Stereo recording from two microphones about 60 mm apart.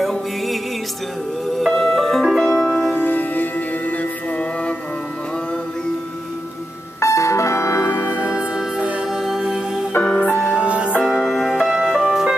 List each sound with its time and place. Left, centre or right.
0.0 s music: centre
1.6 s music: centre
2.9 s music: left
7.0 s music: left
9.1 s music: centre
10.1 s music: left
10.5 s music: centre
11.2 s music: centre
11.5 s music: centre